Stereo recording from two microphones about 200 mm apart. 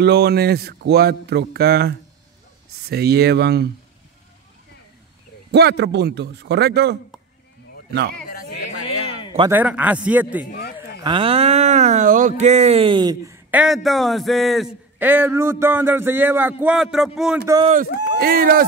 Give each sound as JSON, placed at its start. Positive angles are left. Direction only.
{"t": 0.0, "sound": "speech", "side_deg": -55}
{"t": 5.5, "sound": "a man's voice", "side_deg": -55}
{"t": 9.5, "sound": "speech", "side_deg": -10}
{"t": 11.0, "sound": "speech", "side_deg": -25}
{"t": 17.8, "sound": "speech", "side_deg": 55}
{"t": 18.2, "sound": "speech", "side_deg": -45}